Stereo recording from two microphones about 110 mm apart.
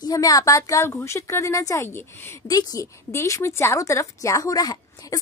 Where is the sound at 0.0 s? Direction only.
35° left (ahead or behind).